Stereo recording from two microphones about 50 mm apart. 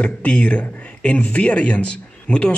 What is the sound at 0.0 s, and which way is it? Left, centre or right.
A man's voice, left.